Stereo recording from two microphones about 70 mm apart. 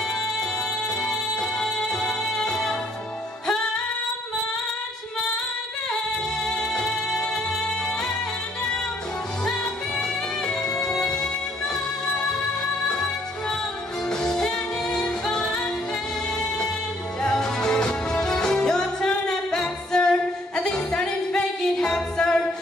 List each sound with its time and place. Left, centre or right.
1.0 s music: centre
6.4 s music: centre
9.9 s music: centre
17.2 s music: centre